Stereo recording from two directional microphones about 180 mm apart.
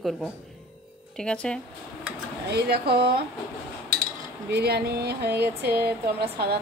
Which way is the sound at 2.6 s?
60° right (ahead or behind).